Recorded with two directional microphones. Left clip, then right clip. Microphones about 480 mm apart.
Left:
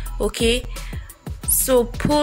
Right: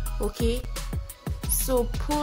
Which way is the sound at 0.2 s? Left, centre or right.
Left.